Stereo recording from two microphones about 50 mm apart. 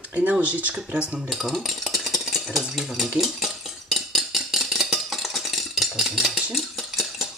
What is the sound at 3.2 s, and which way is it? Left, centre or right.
Cutlery, centre.